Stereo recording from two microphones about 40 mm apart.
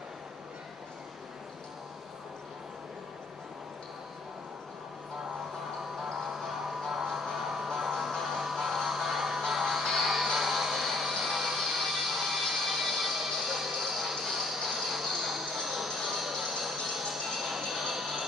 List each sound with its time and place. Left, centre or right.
6.4 s music: centre